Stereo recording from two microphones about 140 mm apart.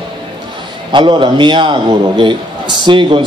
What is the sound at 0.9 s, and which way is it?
A man's voice, 35° right (ahead or behind).